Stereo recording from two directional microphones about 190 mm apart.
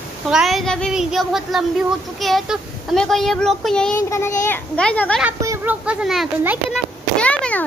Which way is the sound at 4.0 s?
15° left (ahead or behind).